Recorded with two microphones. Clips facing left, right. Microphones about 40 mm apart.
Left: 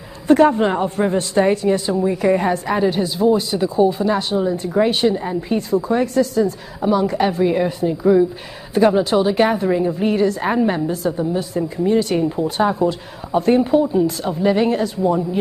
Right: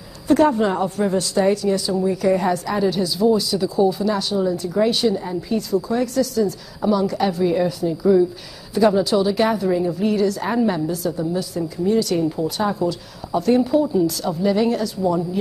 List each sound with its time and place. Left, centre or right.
0.3 s a woman's voice: left